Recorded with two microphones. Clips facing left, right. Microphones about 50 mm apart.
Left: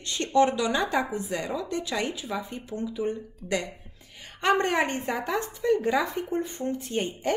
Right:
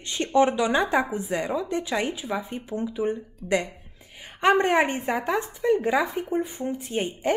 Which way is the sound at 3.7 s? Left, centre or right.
Centre.